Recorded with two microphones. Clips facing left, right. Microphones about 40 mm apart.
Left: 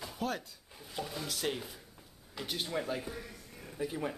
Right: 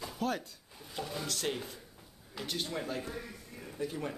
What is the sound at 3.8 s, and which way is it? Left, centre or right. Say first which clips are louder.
Speech: left 1 dB; centre.